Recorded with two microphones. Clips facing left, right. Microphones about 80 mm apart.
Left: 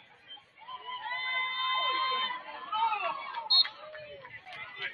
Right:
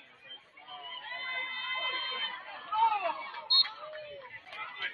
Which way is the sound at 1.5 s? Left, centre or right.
Left.